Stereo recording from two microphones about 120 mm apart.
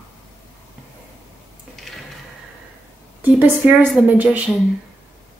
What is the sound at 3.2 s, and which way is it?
A woman's voice, 15° right (ahead or behind).